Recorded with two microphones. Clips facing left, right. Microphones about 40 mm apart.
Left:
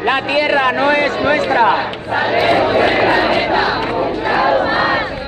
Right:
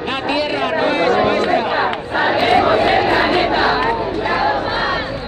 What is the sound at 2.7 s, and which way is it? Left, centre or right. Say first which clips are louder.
Speech: left 2 dB; left.